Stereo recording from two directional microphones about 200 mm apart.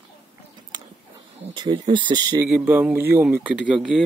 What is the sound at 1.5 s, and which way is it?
Speech, 25° right (ahead or behind).